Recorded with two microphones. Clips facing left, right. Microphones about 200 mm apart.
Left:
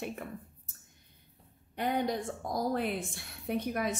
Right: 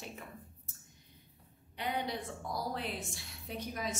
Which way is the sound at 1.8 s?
45° left (ahead or behind).